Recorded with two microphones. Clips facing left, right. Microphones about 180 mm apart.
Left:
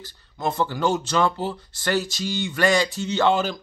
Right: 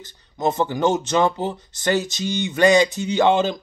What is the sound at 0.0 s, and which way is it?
Speech, 20° right (ahead or behind).